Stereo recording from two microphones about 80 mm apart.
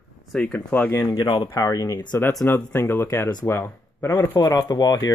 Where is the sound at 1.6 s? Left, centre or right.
Left.